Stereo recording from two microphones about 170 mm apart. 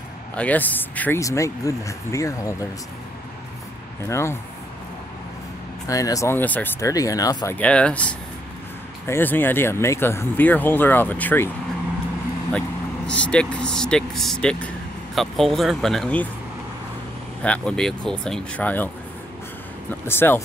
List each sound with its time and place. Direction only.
0.4 s speech: 10° left (ahead or behind)
4.0 s speech: 15° left (ahead or behind)
5.9 s speech: 20° left (ahead or behind)
7.5 s speech: 5° left (ahead or behind)
12.5 s speech: 5° left (ahead or behind)
17.4 s speech: 5° left (ahead or behind)
19.9 s speech: 15° left (ahead or behind)